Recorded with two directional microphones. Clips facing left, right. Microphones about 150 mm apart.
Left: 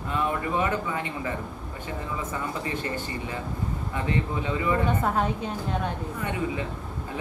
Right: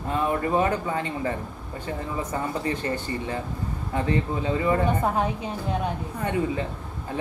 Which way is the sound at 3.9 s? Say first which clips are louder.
Right 3 dB; 35° right (ahead or behind).